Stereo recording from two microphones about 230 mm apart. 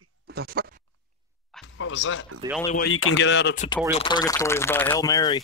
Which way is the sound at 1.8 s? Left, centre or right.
Left.